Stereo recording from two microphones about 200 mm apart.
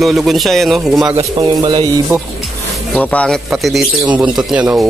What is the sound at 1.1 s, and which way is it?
Speech, 20° right (ahead or behind).